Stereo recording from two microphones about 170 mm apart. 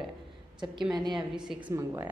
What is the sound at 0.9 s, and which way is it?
Speech, 25° right (ahead or behind).